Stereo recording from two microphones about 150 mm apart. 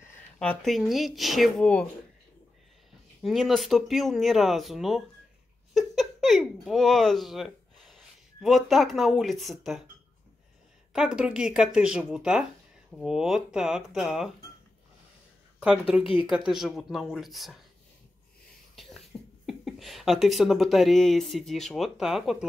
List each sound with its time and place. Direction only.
0.4 s speech: 5° left (ahead or behind)
3.2 s speech: centre (ahead or behind)
10.9 s speech: 5° right (ahead or behind)
16.0 s speech: 35° left (ahead or behind)
16.3 s speech: 5° right (ahead or behind)
18.8 s speech: centre (ahead or behind)